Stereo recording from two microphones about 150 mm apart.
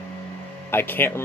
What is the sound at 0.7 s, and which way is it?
Speech, 15° left (ahead or behind).